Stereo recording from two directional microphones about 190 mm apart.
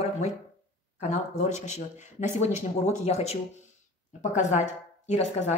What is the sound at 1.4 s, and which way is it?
Speech, 35° left (ahead or behind).